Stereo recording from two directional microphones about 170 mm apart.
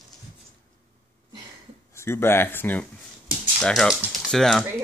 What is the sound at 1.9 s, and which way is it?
Speech, 15° left (ahead or behind).